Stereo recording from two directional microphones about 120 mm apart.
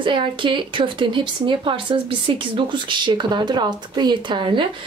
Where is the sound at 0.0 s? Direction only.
45° right (ahead or behind).